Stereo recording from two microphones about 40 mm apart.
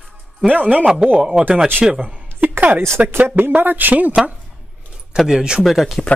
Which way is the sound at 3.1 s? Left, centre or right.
Right.